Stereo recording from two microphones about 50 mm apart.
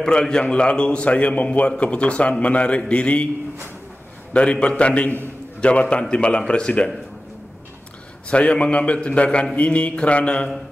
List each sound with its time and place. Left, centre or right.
0.0 s a man's voice: centre
4.3 s a man's voice: left
8.3 s a man's voice: left